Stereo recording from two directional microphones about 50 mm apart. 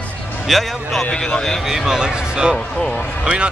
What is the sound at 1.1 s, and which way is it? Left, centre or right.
Speech, centre.